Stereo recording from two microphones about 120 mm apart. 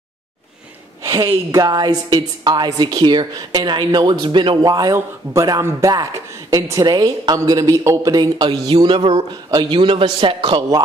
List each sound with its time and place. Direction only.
1.0 s a woman's voice: 30° right (ahead or behind)